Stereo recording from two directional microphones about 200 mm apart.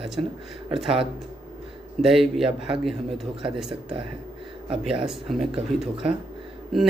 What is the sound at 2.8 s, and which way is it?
Speech, centre (ahead or behind).